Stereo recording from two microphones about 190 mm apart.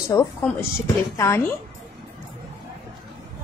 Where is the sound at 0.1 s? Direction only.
15° left (ahead or behind).